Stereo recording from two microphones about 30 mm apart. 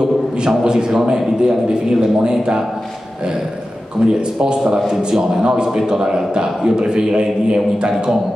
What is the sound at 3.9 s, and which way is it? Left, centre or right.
A man's voice, right.